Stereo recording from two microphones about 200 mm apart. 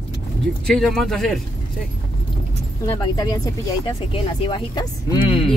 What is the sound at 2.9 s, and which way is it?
Speech, 20° left (ahead or behind).